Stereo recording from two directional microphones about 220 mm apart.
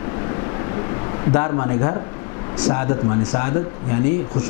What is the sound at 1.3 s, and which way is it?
A man's voice, 15° left (ahead or behind).